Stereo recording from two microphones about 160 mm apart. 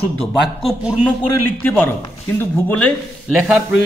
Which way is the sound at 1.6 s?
10° left (ahead or behind).